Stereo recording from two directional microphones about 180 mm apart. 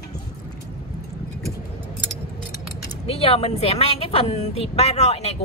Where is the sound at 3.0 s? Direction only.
35° left (ahead or behind).